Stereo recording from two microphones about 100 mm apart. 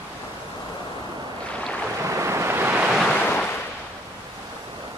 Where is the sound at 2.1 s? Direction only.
30° right (ahead or behind).